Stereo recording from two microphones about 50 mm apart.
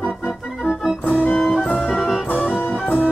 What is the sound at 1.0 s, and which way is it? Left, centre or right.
Music, left.